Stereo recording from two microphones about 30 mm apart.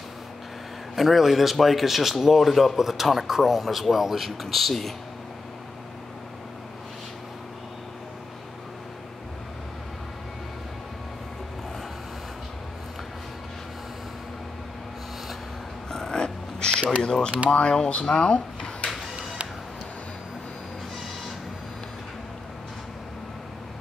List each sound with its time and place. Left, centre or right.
0.9 s speech: centre
15.9 s a sound: centre
16.2 s cat: left
17.5 s speech: left
18.0 s speech: left
18.3 s a sound: left